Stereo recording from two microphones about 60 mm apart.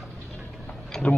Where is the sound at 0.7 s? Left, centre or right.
Centre.